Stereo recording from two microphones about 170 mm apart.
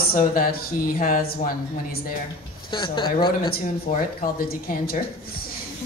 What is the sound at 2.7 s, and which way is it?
Speech, 30° left (ahead or behind).